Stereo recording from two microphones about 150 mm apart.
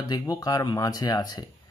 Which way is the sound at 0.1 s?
25° left (ahead or behind).